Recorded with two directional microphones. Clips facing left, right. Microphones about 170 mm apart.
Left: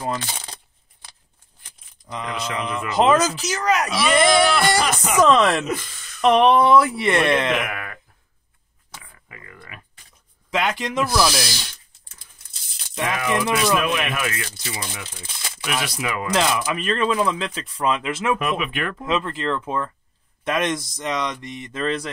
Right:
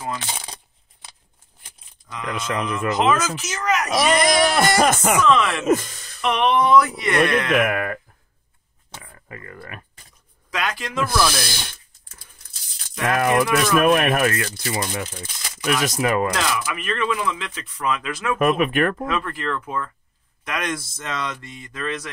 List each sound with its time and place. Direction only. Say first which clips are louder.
2.3 s speech: right 2 dB; 50° right (ahead or behind)
3.0 s speech: left 5 dB; 35° left (ahead or behind)
4.6 s speech: right 3 dB; 45° right (ahead or behind)
5.2 s speech: left 6 dB; 35° left (ahead or behind)
5.7 s a sound: right 8 dB; 45° right (ahead or behind)
6.2 s speech: left 4 dB; 30° left (ahead or behind)
7.5 s a sound: right 6 dB; 50° right (ahead or behind)
10.5 s speech: left 3 dB; 25° left (ahead or behind)
11.3 s speech: left 1 dB; 55° right (ahead or behind)
13.1 s speech: right 4 dB; 55° right (ahead or behind)
16.3 s speech: left 3 dB; 25° left (ahead or behind)
18.4 s speech: right 6 dB; 50° right (ahead or behind)
19.0 s speech: left 2 dB; 20° left (ahead or behind)